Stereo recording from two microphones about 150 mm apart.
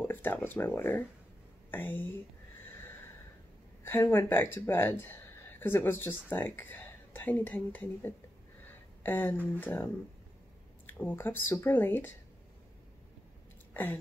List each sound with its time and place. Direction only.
0.0 s speech: 15° left (ahead or behind)
2.7 s snort: 15° left (ahead or behind)
3.8 s speech: 15° left (ahead or behind)
8.6 s a sound: 15° left (ahead or behind)
9.6 s speech: 10° left (ahead or behind)
10.9 s speech: 10° left (ahead or behind)